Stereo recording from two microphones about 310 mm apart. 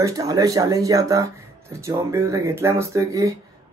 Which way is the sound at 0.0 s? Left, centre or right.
Centre.